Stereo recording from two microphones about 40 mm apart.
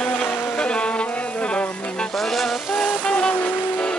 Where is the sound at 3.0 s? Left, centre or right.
Left.